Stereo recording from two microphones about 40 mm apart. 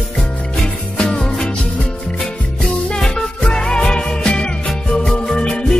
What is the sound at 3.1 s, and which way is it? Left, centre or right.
Music, left.